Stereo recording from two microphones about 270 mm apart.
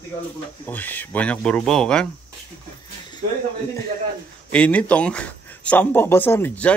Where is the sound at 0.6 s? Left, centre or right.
Centre.